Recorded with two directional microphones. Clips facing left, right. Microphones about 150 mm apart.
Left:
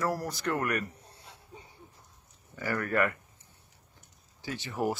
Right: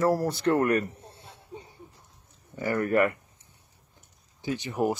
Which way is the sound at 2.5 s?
25° right (ahead or behind).